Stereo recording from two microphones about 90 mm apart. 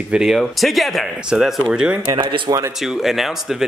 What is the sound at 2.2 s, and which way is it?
Speech, 60° right (ahead or behind).